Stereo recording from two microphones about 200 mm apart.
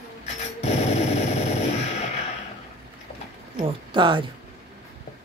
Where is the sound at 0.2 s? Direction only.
35° left (ahead or behind).